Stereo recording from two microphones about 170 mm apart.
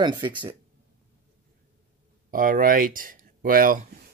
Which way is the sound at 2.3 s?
55° right (ahead or behind).